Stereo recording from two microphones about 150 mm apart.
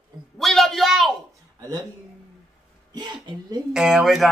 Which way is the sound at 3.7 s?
5° right (ahead or behind).